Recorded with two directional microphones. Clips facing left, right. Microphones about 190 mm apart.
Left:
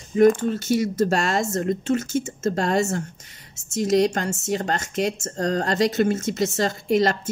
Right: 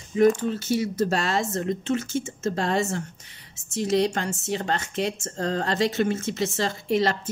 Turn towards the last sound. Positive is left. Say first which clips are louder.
# left 3 dB
turn(degrees=45)  # may be behind; listen again after turning